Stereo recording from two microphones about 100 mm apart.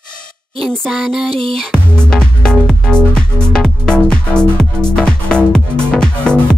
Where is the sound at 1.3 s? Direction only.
70° right (ahead or behind).